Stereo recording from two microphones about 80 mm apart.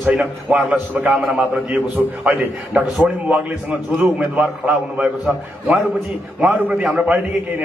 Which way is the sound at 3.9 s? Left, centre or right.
Centre.